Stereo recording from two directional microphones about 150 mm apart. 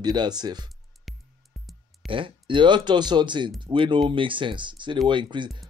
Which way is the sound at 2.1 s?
35° right (ahead or behind).